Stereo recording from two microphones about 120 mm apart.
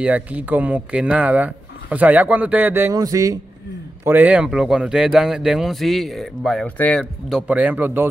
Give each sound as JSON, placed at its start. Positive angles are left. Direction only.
{"t": 0.0, "sound": "speech", "side_deg": -10}
{"t": 2.9, "sound": "speech", "side_deg": -30}
{"t": 4.0, "sound": "speech", "side_deg": -15}
{"t": 7.2, "sound": "speech", "side_deg": -10}